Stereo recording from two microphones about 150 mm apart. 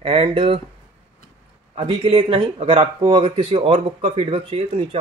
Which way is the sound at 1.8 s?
40° right (ahead or behind).